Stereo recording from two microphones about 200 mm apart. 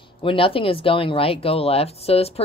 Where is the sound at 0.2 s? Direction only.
25° left (ahead or behind).